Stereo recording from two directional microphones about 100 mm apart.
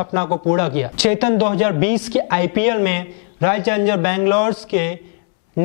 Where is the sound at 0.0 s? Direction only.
15° left (ahead or behind).